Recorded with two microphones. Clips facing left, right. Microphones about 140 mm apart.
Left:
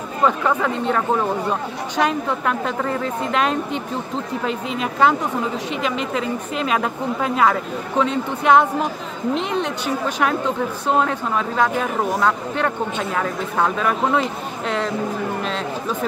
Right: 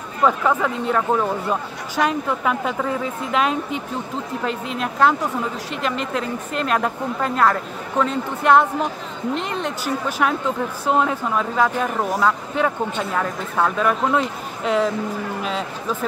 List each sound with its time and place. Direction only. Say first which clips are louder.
0.2 s a woman's voice: even; centre (ahead or behind)